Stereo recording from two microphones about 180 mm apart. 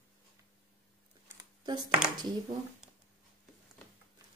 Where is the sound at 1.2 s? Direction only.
25° right (ahead or behind).